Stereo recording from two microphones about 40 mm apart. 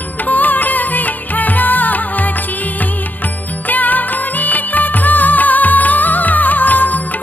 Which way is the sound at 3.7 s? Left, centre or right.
Left.